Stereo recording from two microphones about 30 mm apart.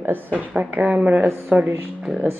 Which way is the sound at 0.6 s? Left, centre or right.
Right.